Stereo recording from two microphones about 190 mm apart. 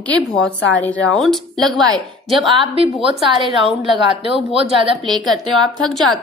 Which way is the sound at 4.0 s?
30° right (ahead or behind).